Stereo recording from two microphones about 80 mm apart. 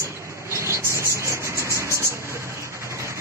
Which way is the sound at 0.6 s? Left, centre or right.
Right.